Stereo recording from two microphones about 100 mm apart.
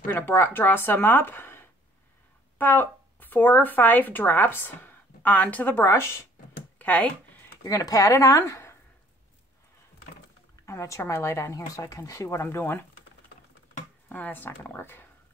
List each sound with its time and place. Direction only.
0.1 s speech: 20° left (ahead or behind)
6.8 s a sound: 15° left (ahead or behind)
7.6 s speech: 35° left (ahead or behind)
10.6 s speech: 30° left (ahead or behind)
14.0 s speech: 15° left (ahead or behind)